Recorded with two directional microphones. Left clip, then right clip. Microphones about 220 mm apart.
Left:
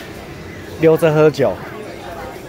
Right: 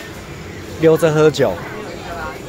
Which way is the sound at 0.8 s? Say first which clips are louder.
Even; 15° left (ahead or behind).